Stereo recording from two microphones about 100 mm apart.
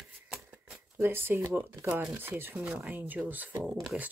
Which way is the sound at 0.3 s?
10° right (ahead or behind).